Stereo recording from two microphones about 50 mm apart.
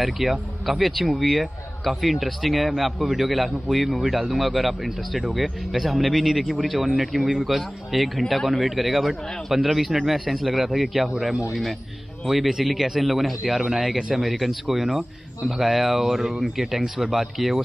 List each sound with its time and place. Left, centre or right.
0.0 s a man's voice: centre